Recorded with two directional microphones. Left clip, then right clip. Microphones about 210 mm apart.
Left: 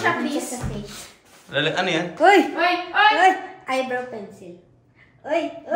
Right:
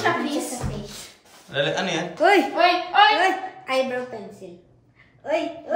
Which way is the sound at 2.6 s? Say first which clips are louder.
Right 2 dB; centre (ahead or behind).